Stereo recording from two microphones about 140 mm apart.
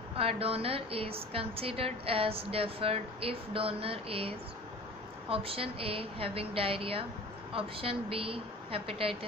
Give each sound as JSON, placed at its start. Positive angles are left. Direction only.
{"t": 0.1, "sound": "a woman's voice", "side_deg": -45}